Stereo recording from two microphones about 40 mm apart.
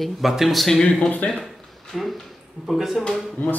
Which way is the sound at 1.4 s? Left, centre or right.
Centre.